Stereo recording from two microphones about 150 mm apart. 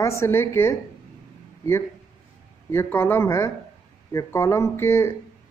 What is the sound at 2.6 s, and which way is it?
A woman's voice, 15° left (ahead or behind).